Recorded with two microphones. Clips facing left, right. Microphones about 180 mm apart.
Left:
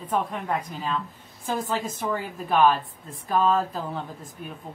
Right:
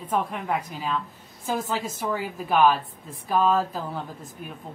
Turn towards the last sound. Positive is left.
turn(degrees=-5)  # may be behind; listen again after turning